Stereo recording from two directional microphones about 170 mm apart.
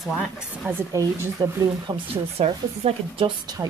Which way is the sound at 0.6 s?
15° right (ahead or behind).